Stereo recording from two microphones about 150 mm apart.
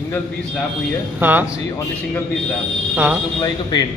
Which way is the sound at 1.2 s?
15° right (ahead or behind).